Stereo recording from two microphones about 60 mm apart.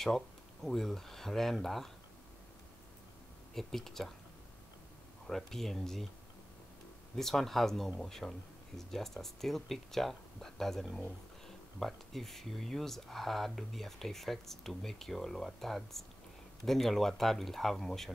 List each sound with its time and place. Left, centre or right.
0.0 s speech: centre
3.5 s speech: centre
5.2 s speech: centre
7.2 s speech: centre